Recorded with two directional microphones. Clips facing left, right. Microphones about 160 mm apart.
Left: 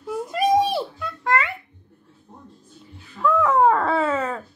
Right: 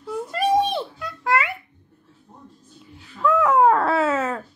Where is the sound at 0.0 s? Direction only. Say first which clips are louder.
Left 1 dB; 10° left (ahead or behind); by 1.5 s 5° right (ahead or behind).